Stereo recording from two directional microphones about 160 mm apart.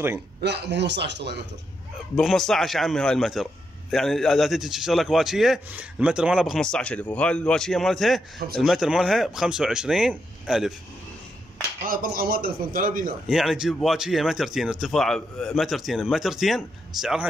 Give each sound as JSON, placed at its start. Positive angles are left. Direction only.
{"t": 0.4, "sound": "a man's voice", "side_deg": -90}
{"t": 2.1, "sound": "a man's voice", "side_deg": 0}
{"t": 11.8, "sound": "a man's voice", "side_deg": -65}
{"t": 13.3, "sound": "a man's voice", "side_deg": 0}